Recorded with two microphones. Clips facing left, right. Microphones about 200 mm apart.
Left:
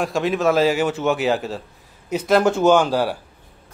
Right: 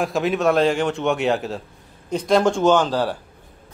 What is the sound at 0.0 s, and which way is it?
Speech, centre (ahead or behind).